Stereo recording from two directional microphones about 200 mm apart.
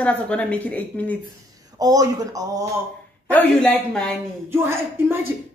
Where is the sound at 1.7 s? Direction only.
20° right (ahead or behind).